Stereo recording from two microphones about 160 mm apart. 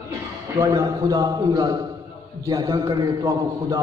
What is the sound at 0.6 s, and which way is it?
A man's voice, 20° right (ahead or behind).